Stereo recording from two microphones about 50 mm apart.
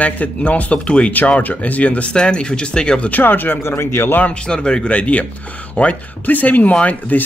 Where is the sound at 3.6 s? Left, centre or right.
Left.